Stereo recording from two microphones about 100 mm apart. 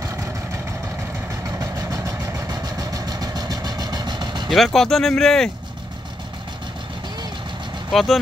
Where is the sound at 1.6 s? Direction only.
35° right (ahead or behind).